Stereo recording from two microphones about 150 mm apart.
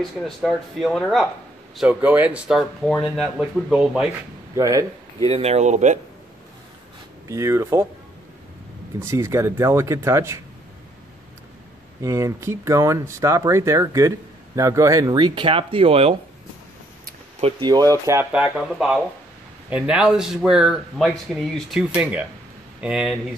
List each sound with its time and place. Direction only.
0.2 s speech: centre (ahead or behind)
1.8 s speech: 10° right (ahead or behind)
4.6 s speech: 20° right (ahead or behind)
5.3 s speech: 45° right (ahead or behind)
7.2 s speech: 20° right (ahead or behind)
9.0 s speech: 20° right (ahead or behind)
12.0 s speech: 20° right (ahead or behind); by 16.2 s 40° right (ahead or behind)
17.6 s speech: 25° right (ahead or behind)
18.3 s speech: 5° right (ahead or behind)